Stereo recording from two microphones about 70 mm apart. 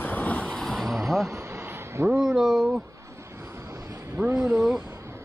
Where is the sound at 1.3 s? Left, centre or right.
Right.